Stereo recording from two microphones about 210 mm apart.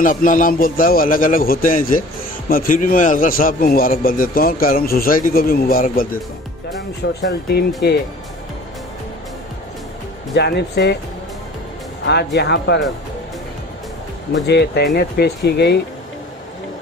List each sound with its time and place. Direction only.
0.0 s a man's voice: 40° left (ahead or behind)
7.2 s a man's voice: 50° left (ahead or behind)
10.3 s a man's voice: 50° left (ahead or behind)
12.1 s a man's voice: 55° left (ahead or behind)
14.3 s a man's voice: 50° left (ahead or behind)